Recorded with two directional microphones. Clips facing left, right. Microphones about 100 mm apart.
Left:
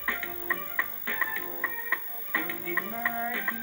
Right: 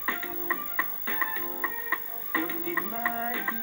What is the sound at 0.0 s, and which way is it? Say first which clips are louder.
Music: right 2 dB; 20° right (ahead or behind).